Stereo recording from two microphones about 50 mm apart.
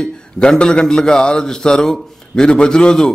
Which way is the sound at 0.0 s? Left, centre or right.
Centre.